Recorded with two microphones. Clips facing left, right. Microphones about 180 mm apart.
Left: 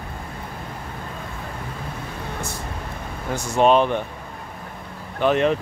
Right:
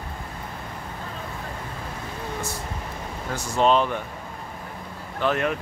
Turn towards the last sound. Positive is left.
turn(degrees=20)  # may be behind; listen again after turning